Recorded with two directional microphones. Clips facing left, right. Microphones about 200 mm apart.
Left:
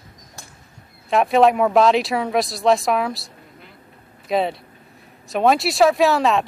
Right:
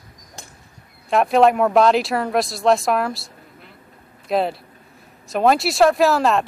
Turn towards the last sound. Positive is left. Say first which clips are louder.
# even
turn(degrees=0)  # may be behind; listen again after turning